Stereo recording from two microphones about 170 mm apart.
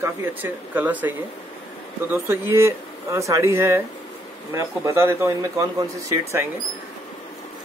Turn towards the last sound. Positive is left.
turn(degrees=-15)  # may be behind; listen again after turning